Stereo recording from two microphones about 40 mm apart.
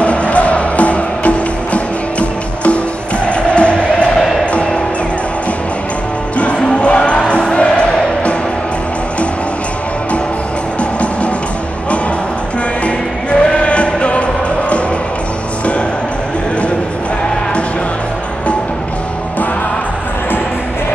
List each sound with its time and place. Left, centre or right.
0.0 s music: left
6.3 s music: left
10.8 s music: left
12.8 s music: left